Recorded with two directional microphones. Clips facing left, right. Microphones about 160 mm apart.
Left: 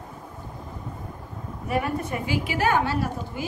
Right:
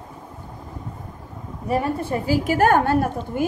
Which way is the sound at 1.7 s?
30° right (ahead or behind).